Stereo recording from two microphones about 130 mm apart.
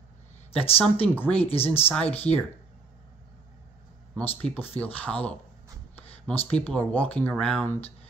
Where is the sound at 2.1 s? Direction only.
50° left (ahead or behind).